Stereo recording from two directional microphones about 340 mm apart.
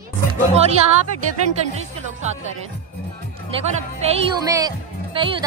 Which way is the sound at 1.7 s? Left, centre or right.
Centre.